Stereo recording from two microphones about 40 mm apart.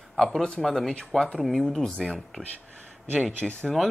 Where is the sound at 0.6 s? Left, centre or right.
Centre.